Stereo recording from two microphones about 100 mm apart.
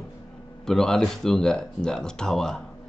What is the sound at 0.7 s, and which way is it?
Speech, 5° left (ahead or behind).